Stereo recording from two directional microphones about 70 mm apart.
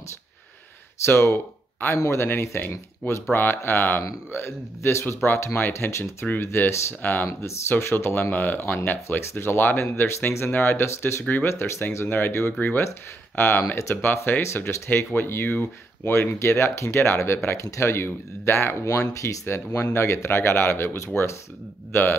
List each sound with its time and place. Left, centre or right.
1.0 s speech: left
7.2 s speech: left
13.7 s speech: left